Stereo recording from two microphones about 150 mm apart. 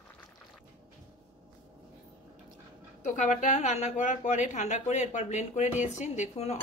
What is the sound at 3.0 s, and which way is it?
A woman's voice, 55° left (ahead or behind).